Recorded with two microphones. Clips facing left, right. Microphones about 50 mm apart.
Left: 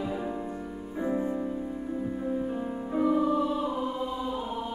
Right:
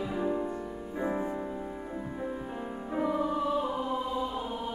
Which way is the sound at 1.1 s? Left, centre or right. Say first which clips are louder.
Left 5 dB; centre.